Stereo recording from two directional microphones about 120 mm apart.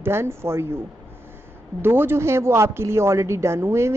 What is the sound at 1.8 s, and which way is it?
A woman's voice, 20° right (ahead or behind).